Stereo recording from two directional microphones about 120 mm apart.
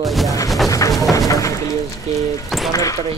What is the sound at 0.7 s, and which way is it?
Speech, 25° left (ahead or behind).